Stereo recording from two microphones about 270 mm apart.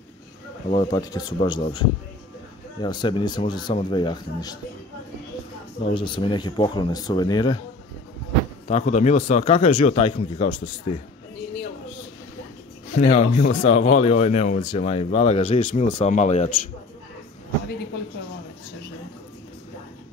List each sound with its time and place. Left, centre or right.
0.7 s a man's voice: centre
5.9 s a man's voice: centre
8.6 s speech: left
12.9 s speech: left